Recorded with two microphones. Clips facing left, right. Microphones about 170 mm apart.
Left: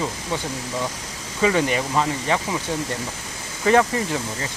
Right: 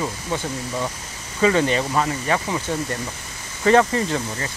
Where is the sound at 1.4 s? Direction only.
10° left (ahead or behind).